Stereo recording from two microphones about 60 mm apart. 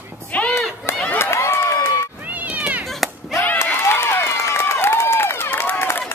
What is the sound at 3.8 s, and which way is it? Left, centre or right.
Run, left.